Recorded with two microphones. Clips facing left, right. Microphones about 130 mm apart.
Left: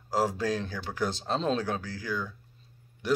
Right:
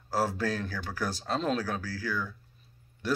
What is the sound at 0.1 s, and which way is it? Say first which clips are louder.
Speech: left 2 dB; 15° left (ahead or behind).